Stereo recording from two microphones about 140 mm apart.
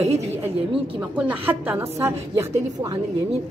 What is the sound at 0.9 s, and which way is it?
A woman's voice, 10° right (ahead or behind).